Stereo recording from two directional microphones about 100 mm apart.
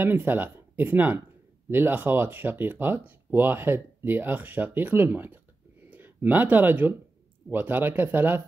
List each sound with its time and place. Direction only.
0.0 s speech: 20° right (ahead or behind)